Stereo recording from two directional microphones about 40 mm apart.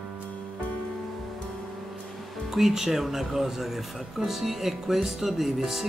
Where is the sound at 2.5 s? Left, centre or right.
Centre.